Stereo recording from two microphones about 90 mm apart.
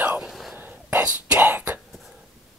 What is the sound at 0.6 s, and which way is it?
Whispering, 20° right (ahead or behind).